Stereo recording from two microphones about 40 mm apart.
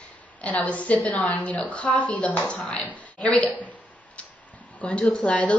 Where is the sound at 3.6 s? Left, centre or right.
Left.